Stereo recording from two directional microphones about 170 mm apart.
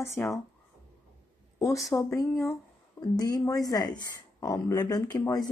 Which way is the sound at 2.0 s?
20° left (ahead or behind).